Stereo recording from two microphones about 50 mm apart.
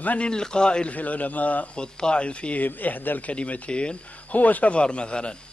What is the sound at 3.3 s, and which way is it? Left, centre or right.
Speech, left.